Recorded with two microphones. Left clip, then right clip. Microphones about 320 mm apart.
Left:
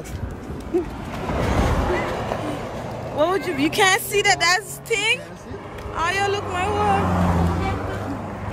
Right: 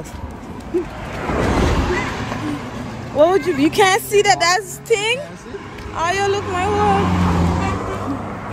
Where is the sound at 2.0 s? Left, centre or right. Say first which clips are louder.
Right 1 dB; left.